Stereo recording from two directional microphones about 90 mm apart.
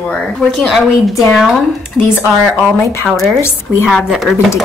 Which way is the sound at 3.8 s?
5° right (ahead or behind).